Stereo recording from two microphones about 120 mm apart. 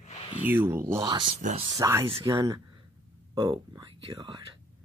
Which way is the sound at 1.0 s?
40° right (ahead or behind).